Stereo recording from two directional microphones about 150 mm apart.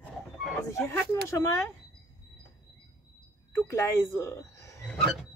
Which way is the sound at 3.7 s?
15° left (ahead or behind).